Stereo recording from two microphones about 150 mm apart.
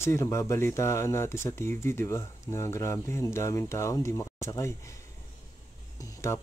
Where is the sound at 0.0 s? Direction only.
20° left (ahead or behind).